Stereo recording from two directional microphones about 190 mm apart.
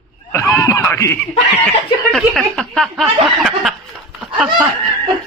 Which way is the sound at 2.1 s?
Centre (ahead or behind).